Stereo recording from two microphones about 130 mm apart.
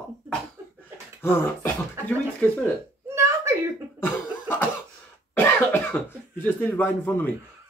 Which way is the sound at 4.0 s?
15° left (ahead or behind).